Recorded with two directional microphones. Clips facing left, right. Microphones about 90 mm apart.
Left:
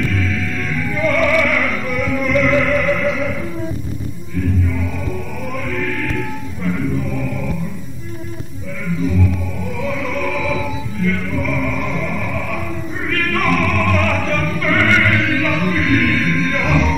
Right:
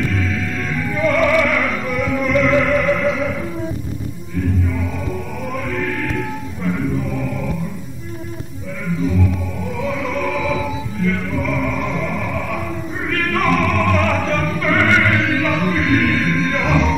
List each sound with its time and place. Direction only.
0.0 s music: 25° right (ahead or behind)
8.8 s music: 25° right (ahead or behind)
9.8 s opera: 25° right (ahead or behind)